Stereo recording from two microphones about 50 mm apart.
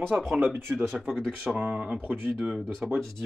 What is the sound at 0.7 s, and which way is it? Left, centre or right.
Speech, centre.